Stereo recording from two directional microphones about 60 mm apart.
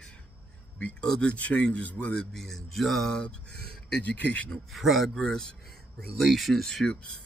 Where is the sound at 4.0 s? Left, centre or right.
Left.